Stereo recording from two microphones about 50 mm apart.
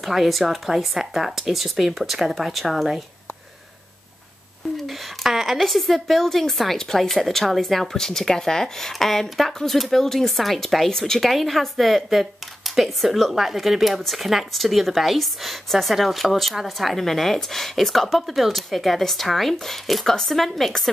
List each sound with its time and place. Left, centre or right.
0.0 s a woman's voice: centre
4.7 s a woman's voice: centre